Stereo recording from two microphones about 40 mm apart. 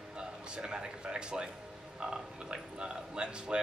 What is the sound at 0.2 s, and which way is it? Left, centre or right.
A man's voice, right.